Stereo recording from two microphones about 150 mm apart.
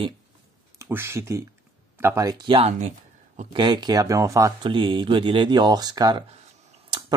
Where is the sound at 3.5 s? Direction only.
30° right (ahead or behind).